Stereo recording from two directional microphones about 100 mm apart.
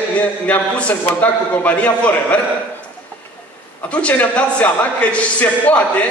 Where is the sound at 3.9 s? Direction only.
15° left (ahead or behind).